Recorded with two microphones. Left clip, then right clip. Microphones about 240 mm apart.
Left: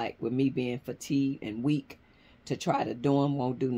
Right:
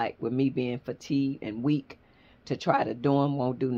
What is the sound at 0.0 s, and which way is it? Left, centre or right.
Speech, centre.